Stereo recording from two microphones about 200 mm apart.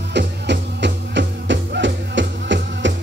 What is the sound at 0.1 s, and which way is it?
Music, 60° right (ahead or behind).